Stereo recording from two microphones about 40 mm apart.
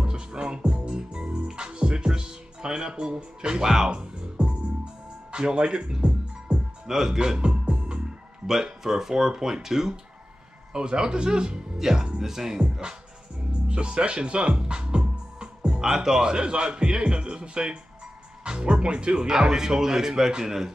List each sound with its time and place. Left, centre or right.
0.0 s music: right
5.3 s speech: right
7.2 s music: right
8.8 s speech: centre